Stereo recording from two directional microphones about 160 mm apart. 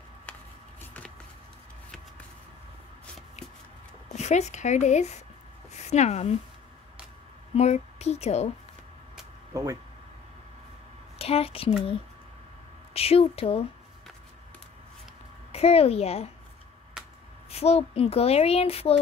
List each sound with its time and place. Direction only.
0.3 s a sound: 10° left (ahead or behind)
4.1 s speech: 45° left (ahead or behind)
7.5 s speech: 45° left (ahead or behind)
9.5 s speech: 20° right (ahead or behind)
11.1 s a woman's voice: 40° left (ahead or behind)
12.9 s speech: 40° left (ahead or behind)
15.5 s speech: 40° left (ahead or behind)
17.5 s speech: 40° left (ahead or behind)